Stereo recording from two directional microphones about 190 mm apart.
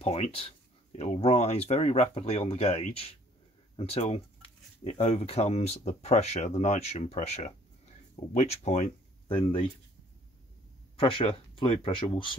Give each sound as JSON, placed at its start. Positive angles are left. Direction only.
{"t": 0.0, "sound": "speech", "side_deg": 30}
{"t": 11.0, "sound": "speech", "side_deg": 30}